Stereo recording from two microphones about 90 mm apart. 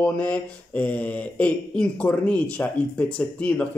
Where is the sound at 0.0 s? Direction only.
15° left (ahead or behind).